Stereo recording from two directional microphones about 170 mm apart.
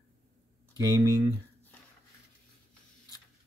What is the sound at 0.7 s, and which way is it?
Speech, 25° right (ahead or behind).